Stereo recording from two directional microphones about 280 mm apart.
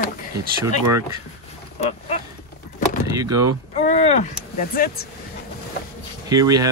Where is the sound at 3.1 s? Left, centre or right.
Centre.